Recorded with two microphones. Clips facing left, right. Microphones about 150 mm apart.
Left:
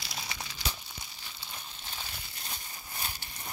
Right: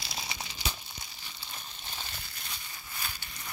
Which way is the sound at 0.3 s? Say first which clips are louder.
Even; 20° right (ahead or behind).